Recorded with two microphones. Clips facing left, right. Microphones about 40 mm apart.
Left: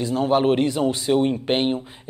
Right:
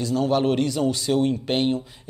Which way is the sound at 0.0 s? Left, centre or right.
Left.